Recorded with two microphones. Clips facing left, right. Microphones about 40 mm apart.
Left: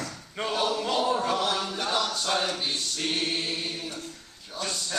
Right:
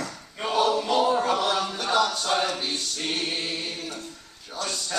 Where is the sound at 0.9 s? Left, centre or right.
Centre.